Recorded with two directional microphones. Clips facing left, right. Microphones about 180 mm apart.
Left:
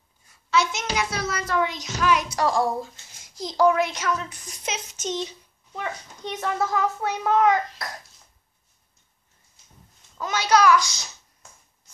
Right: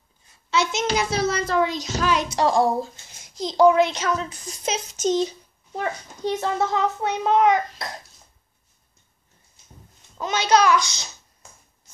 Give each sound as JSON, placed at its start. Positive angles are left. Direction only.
{"t": 0.3, "sound": "a child's voice", "side_deg": -25}
{"t": 10.1, "sound": "a child's voice", "side_deg": -20}